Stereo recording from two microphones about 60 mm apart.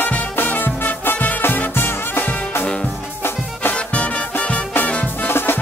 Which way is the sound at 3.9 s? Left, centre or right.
Left.